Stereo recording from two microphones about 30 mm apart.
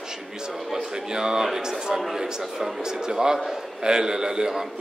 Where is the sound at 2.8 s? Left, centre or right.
Right.